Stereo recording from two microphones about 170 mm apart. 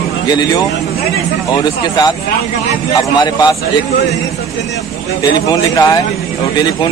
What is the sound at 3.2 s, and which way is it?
Speech, 25° left (ahead or behind).